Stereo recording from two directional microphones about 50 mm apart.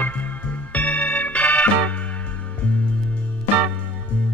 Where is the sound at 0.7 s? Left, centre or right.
Left.